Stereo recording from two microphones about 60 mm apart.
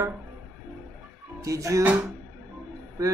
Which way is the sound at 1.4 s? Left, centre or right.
Right.